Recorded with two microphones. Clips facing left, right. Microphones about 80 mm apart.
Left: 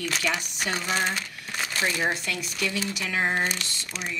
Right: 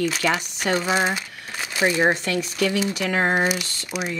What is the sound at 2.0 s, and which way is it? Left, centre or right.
Speech, right.